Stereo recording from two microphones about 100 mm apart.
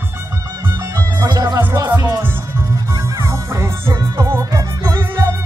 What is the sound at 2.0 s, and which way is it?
Music, 40° right (ahead or behind).